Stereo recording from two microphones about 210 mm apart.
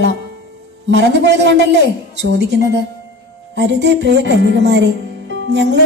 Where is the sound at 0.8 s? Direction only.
55° right (ahead or behind).